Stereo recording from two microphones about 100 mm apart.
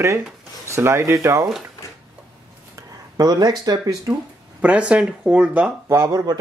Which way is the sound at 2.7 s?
40° right (ahead or behind).